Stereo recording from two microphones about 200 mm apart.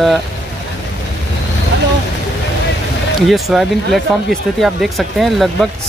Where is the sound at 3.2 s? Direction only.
Centre (ahead or behind).